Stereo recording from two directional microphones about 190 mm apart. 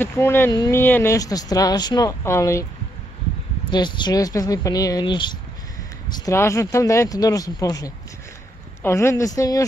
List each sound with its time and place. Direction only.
0.0 s speech: 10° left (ahead or behind)
3.7 s speech: 25° left (ahead or behind)